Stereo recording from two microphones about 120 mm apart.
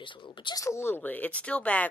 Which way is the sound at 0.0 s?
45° left (ahead or behind).